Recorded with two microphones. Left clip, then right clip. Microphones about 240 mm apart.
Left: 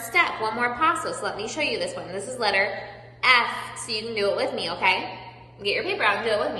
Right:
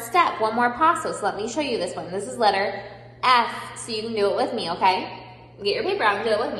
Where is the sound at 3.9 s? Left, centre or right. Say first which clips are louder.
Right 2 dB; centre.